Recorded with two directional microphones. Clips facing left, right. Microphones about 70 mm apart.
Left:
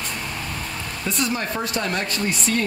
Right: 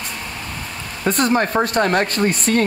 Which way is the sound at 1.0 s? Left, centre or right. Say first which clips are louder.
Right 8 dB; right.